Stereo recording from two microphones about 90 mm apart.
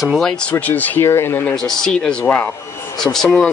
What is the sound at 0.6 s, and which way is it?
Speech, 20° left (ahead or behind).